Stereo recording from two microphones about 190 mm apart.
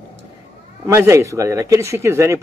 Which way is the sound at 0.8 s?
15° right (ahead or behind).